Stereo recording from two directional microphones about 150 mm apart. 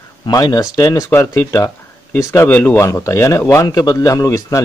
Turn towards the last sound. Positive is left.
turn(degrees=20)  # may be behind; listen again after turning